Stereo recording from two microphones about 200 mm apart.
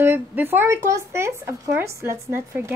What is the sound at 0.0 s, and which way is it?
Speech, 10° right (ahead or behind).